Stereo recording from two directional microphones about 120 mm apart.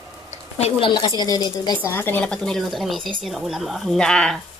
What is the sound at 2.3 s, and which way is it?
Speech, 5° left (ahead or behind).